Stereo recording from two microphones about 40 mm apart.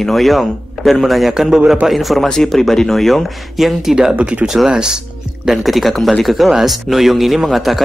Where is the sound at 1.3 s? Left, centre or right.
Centre.